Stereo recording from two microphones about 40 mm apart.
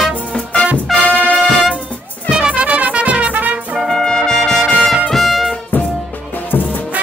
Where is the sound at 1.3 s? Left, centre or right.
Right.